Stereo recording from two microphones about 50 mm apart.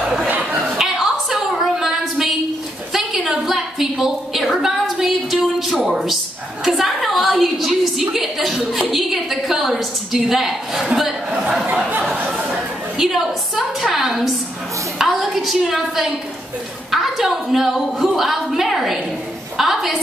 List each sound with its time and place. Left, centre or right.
0.0 s chatter: right
0.7 s a sound: centre
8.1 s chuckle: centre
8.9 s a sound: centre
10.1 s a woman's voice: centre
12.9 s a woman's voice: centre